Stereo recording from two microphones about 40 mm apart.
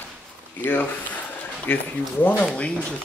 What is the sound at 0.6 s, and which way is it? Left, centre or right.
Speech, left.